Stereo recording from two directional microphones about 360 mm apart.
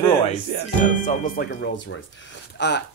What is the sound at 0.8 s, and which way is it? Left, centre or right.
Speech, left.